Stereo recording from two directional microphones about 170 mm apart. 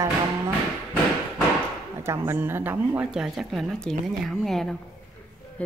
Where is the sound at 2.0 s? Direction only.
15° right (ahead or behind).